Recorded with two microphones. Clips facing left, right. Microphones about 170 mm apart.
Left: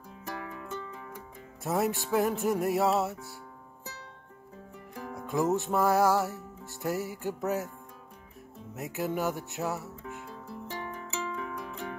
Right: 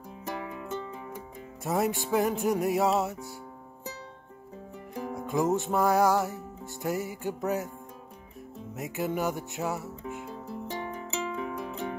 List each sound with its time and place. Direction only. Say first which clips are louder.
0.2 s music: right 3 dB; 20° right (ahead or behind)
1.6 s music: right 1 dB; centre (ahead or behind)
4.9 s music: right 5 dB; 20° right (ahead or behind)
5.2 s music: right 1 dB; centre (ahead or behind)
8.7 s music: right 1 dB; centre (ahead or behind)
10.2 s music: right 4 dB; 20° right (ahead or behind)